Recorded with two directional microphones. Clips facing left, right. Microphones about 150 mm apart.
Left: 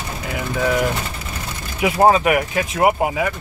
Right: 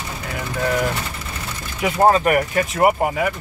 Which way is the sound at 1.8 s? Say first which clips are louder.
Left 1 dB; 15° left (ahead or behind).